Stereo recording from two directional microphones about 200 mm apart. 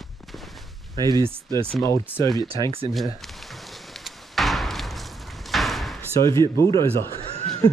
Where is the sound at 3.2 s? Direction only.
Centre (ahead or behind).